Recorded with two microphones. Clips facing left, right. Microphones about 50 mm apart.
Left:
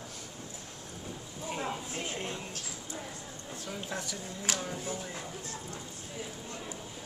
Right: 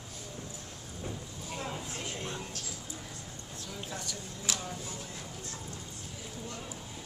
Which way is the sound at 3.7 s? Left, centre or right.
Centre.